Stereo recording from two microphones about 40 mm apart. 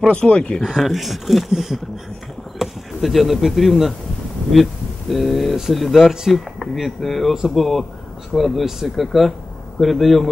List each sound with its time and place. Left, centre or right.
0.0 s speech: left
0.7 s speech: centre